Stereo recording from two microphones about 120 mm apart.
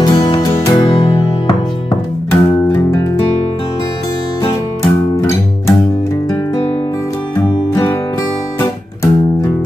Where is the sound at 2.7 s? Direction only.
25° left (ahead or behind).